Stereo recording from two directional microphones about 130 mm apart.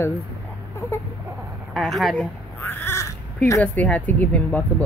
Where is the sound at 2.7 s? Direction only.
15° left (ahead or behind).